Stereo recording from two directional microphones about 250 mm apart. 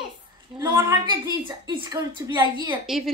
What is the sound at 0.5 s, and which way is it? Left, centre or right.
A woman's voice, centre.